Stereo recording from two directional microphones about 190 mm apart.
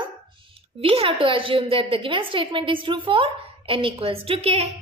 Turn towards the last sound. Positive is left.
turn(degrees=-30)  # may be behind; listen again after turning